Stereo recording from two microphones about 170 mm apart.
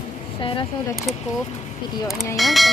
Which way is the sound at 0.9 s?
Centre (ahead or behind).